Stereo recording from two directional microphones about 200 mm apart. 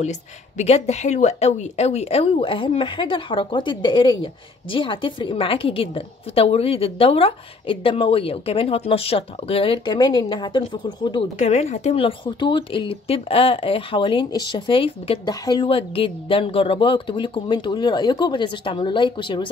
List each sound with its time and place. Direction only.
0.0 s speech: 35° left (ahead or behind)